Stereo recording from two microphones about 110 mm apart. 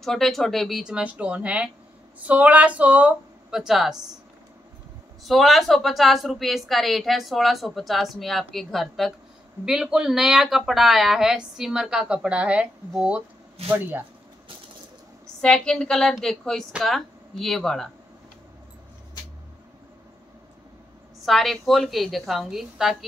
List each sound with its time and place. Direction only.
0.0 s a woman's voice: centre (ahead or behind)
5.2 s a woman's voice: centre (ahead or behind); by 14.0 s 20° right (ahead or behind)
15.4 s a woman's voice: 5° left (ahead or behind)
21.3 s a woman's voice: centre (ahead or behind)